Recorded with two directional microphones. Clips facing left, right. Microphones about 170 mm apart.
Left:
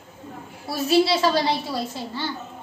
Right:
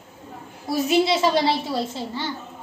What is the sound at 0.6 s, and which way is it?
Speech, 20° right (ahead or behind).